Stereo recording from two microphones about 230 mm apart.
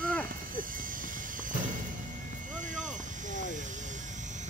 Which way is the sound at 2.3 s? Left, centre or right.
Right.